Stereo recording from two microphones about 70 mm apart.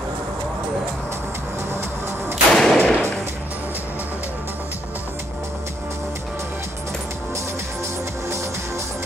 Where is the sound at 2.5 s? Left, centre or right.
Centre.